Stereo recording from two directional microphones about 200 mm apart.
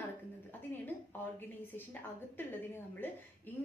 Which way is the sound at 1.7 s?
10° left (ahead or behind).